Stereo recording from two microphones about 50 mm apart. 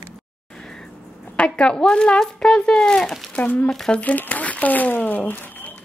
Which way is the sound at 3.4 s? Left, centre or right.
Left.